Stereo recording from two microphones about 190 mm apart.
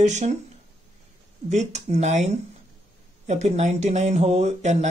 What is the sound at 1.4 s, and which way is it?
Speech, 35° right (ahead or behind).